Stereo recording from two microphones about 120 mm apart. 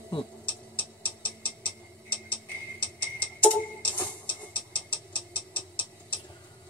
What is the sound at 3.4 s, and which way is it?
Tick-tock, 10° left (ahead or behind).